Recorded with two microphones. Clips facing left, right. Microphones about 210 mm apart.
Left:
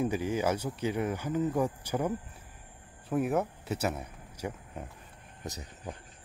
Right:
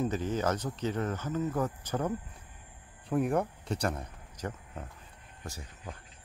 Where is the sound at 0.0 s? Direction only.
10° left (ahead or behind).